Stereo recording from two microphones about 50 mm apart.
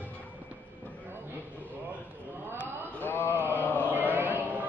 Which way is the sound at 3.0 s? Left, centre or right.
Left.